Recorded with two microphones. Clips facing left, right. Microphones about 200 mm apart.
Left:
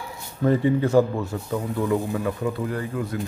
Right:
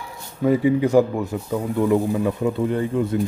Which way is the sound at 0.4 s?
10° right (ahead or behind).